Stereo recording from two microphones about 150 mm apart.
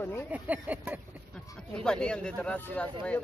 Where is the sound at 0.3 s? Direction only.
10° right (ahead or behind).